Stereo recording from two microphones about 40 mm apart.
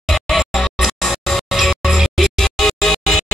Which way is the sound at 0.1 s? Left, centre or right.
Centre.